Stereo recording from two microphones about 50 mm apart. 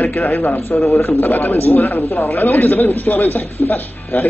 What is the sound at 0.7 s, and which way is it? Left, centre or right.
Speech, centre.